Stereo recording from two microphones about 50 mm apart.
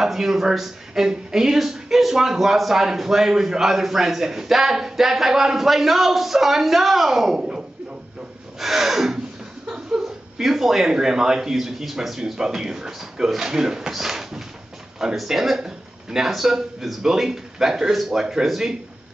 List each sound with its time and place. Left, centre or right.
0.0 s speech: centre
8.5 s gasp: centre
9.7 s a sound: centre
10.0 s speech: centre